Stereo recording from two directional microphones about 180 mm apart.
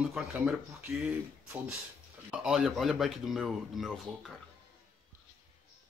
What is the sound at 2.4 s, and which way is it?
Speech, centre (ahead or behind).